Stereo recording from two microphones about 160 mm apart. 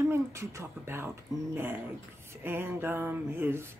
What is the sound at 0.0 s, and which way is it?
Speech, 20° right (ahead or behind).